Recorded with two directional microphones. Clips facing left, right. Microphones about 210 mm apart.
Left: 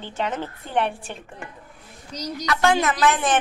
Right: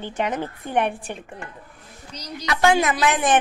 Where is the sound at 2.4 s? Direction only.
15° right (ahead or behind).